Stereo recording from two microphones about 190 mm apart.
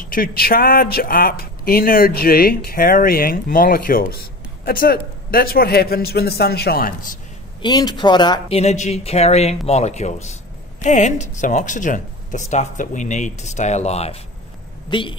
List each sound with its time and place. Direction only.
0.1 s speech: 50° left (ahead or behind)
7.6 s speech: 20° left (ahead or behind)